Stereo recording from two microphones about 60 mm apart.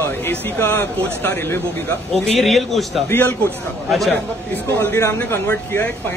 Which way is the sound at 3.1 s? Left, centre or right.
Left.